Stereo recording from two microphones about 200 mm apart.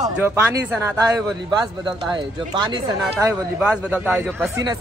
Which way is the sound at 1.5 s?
20° right (ahead or behind).